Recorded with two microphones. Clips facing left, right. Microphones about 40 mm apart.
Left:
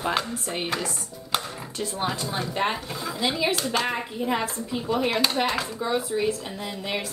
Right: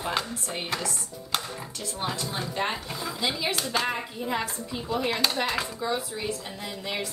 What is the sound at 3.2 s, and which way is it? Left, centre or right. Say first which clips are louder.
A woman's voice: left 4 dB; centre.